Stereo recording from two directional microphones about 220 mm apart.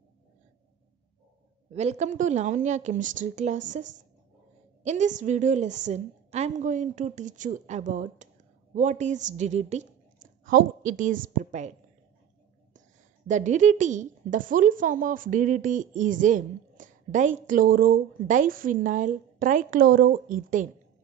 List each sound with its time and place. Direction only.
1.7 s a woman's voice: 30° right (ahead or behind)
4.8 s a woman's voice: 35° right (ahead or behind)
13.3 s a woman's voice: 35° right (ahead or behind)